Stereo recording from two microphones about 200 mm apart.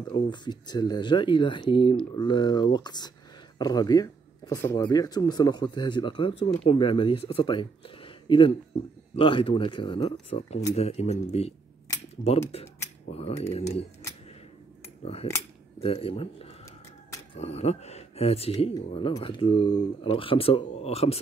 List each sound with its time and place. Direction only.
0.1 s speech: 20° left (ahead or behind)
11.9 s cutlery: 20° left (ahead or behind)
12.3 s speech: 30° left (ahead or behind)
15.8 s speech: 30° left (ahead or behind)